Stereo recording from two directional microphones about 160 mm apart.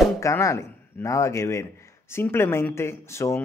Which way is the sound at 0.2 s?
20° left (ahead or behind).